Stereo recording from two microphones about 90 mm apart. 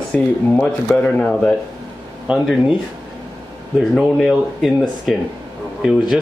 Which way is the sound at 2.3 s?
10° right (ahead or behind).